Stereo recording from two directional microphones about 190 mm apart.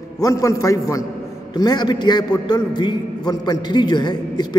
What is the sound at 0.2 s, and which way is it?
A man's voice, 15° left (ahead or behind).